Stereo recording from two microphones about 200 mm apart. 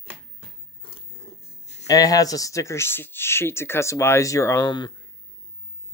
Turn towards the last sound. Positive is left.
turn(degrees=20)  # may be behind; listen again after turning